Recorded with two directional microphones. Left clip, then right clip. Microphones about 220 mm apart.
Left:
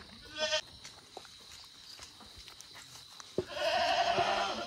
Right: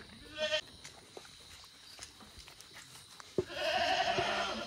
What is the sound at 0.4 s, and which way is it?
Sheep, 20° left (ahead or behind).